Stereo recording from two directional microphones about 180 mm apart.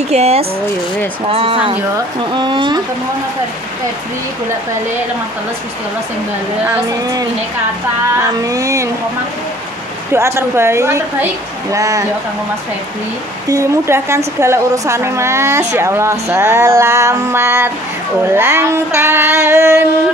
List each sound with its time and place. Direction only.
0.1 s speech: 35° right (ahead or behind)
6.6 s a woman's voice: 20° right (ahead or behind)
10.1 s a woman's voice: 15° right (ahead or behind)
13.5 s a woman's voice: 15° right (ahead or behind)